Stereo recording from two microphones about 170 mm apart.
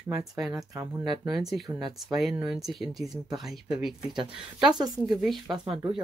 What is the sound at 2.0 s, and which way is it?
Speech, centre (ahead or behind).